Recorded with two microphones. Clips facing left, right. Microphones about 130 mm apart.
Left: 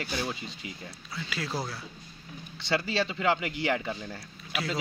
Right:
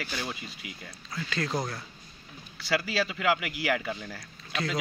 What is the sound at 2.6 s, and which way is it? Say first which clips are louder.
Speech: even; 25° left (ahead or behind).